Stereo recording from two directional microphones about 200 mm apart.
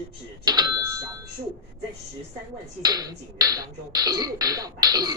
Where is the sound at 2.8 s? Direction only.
20° right (ahead or behind).